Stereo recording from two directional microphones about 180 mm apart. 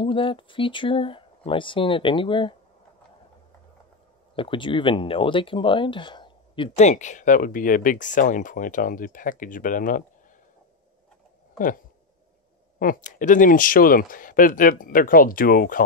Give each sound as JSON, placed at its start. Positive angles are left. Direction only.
{"t": 0.0, "sound": "speech", "side_deg": 30}
{"t": 4.4, "sound": "speech", "side_deg": 30}
{"t": 6.9, "sound": "speech", "side_deg": 40}
{"t": 11.5, "sound": "a sound", "side_deg": 50}
{"t": 12.7, "sound": "speech", "side_deg": 50}